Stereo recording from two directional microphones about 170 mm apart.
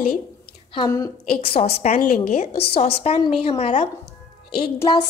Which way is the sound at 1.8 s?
50° left (ahead or behind).